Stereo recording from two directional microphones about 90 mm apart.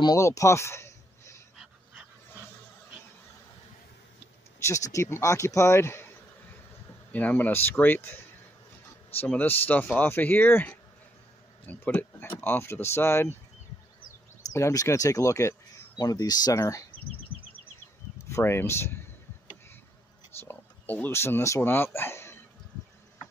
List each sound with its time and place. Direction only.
0.2 s a sound: 35° left (ahead or behind)
4.6 s speech: 35° left (ahead or behind)
7.1 s speech: 20° left (ahead or behind)
9.3 s speech: 20° left (ahead or behind)
14.5 s speech: 40° left (ahead or behind)
18.3 s speech: 25° left (ahead or behind)
20.3 s speech: 20° left (ahead or behind)